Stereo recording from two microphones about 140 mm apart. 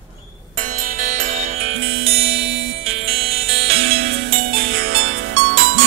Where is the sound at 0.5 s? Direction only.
70° right (ahead or behind); by 4.2 s 45° right (ahead or behind).